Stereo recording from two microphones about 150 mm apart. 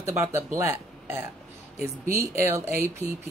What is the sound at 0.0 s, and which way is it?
Speech, 20° right (ahead or behind).